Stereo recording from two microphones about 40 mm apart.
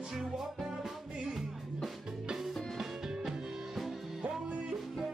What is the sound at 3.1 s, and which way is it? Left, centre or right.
Music, centre.